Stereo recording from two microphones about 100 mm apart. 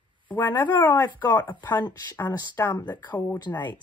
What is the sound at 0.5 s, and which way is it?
Speech, 45° left (ahead or behind).